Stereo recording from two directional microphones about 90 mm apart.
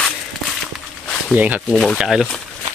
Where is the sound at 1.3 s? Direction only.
20° right (ahead or behind).